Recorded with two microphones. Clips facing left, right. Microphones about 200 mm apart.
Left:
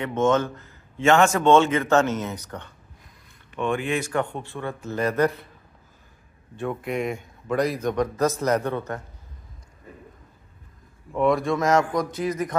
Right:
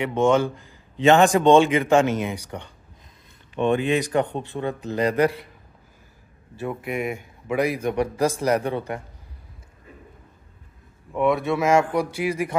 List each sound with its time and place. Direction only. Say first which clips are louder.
0.0 s speech: right 2 dB; 10° right (ahead or behind)
6.5 s speech: left 1 dB; 5° right (ahead or behind)
11.1 s speech: even; 5° right (ahead or behind)